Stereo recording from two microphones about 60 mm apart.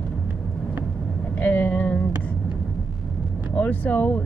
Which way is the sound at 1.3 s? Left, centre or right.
Left.